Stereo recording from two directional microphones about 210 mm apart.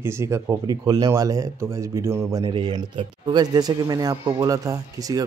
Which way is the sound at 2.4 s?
25° right (ahead or behind).